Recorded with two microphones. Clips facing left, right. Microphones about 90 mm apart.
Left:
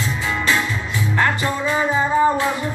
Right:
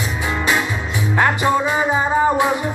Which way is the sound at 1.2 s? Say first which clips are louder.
Right 4 dB; 20° right (ahead or behind).